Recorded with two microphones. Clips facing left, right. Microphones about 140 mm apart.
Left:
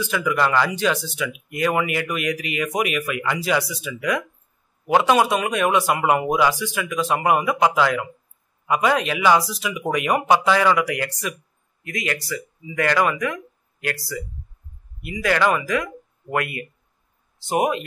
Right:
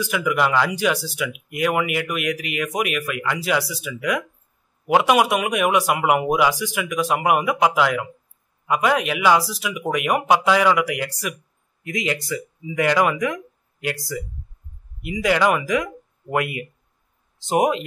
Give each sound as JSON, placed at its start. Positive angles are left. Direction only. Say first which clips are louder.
{"t": 0.0, "sound": "speech", "louder": "even", "side_deg": -10}
{"t": 11.8, "sound": "speech", "louder": "right 2 dB", "side_deg": -20}
{"t": 15.0, "sound": "speech", "louder": "right 1 dB", "side_deg": -15}